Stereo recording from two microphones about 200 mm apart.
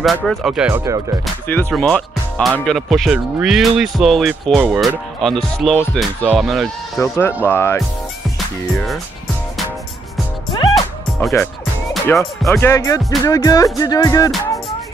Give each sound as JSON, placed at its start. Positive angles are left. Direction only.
{"t": 0.0, "sound": "speech", "side_deg": 0}
{"t": 1.2, "sound": "speech", "side_deg": 5}
{"t": 7.0, "sound": "speech", "side_deg": 10}
{"t": 8.7, "sound": "speech", "side_deg": 0}
{"t": 11.1, "sound": "speech", "side_deg": 10}
{"t": 12.4, "sound": "speech", "side_deg": 15}